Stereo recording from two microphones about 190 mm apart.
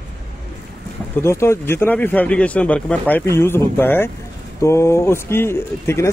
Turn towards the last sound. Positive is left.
turn(degrees=15)  # may be behind; listen again after turning